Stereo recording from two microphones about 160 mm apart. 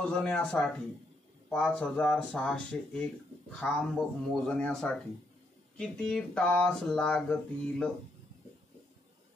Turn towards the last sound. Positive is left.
turn(degrees=5)  # may be behind; listen again after turning